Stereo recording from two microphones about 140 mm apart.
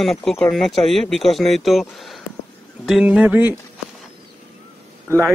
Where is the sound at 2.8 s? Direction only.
5° right (ahead or behind).